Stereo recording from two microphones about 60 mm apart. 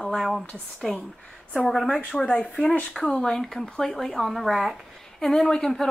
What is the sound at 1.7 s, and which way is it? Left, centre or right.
Speech, centre.